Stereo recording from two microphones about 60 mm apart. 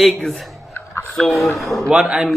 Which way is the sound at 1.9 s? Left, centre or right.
Centre.